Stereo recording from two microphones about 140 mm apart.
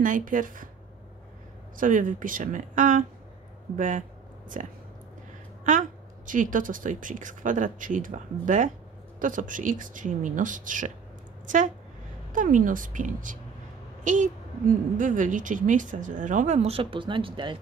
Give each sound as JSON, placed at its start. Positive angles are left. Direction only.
{"t": 0.0, "sound": "a woman's voice", "side_deg": -70}
{"t": 1.8, "sound": "a woman's voice", "side_deg": -70}